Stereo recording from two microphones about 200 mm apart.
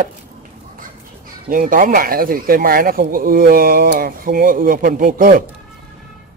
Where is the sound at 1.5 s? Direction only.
40° right (ahead or behind).